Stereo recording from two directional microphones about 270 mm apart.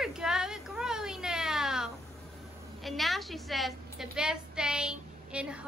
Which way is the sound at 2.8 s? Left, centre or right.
Centre.